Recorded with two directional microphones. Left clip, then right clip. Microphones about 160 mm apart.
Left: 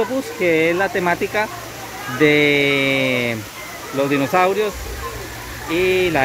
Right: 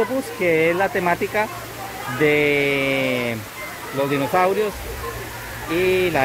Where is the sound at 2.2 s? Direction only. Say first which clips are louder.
Left 3 dB; 15° left (ahead or behind).